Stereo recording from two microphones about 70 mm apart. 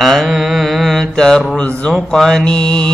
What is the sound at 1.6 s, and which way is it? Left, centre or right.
Speech, centre.